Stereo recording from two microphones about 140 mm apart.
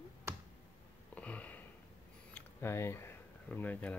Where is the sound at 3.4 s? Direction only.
10° left (ahead or behind).